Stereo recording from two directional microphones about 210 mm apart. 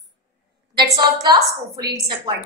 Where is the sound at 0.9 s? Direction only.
20° right (ahead or behind).